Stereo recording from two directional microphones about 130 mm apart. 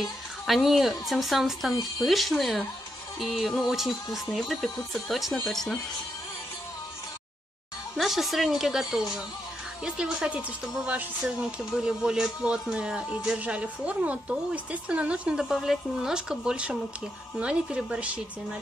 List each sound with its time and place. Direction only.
0.0 s speech: centre (ahead or behind)
8.0 s speech: centre (ahead or behind)